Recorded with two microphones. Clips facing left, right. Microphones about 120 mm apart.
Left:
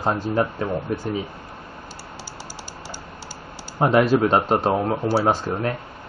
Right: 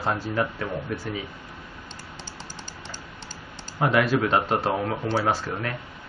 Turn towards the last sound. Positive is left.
turn(degrees=35)  # may be behind; listen again after turning